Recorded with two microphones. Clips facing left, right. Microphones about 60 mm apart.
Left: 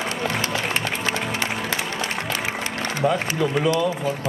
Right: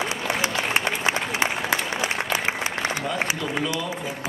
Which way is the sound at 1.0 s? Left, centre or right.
Centre.